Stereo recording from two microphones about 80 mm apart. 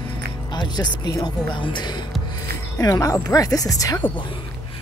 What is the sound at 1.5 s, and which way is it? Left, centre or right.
Speech, left.